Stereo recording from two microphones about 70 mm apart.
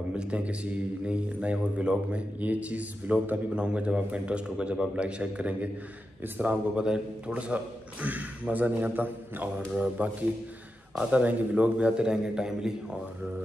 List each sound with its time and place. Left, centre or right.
0.1 s a man's voice: centre
6.8 s a man's voice: centre